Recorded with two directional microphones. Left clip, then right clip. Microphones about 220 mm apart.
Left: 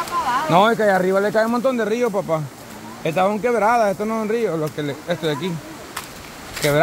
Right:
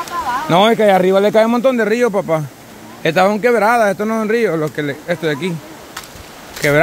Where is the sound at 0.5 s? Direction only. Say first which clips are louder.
Right 5 dB; 35° right (ahead or behind).